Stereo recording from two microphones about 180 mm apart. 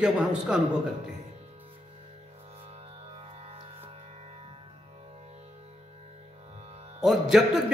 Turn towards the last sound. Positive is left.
turn(degrees=0)  # may be behind; listen again after turning